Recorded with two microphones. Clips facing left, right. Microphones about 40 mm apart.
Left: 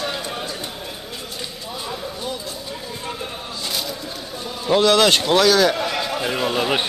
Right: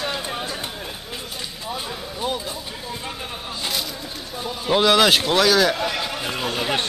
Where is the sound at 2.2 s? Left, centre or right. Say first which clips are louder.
Right 7 dB; right.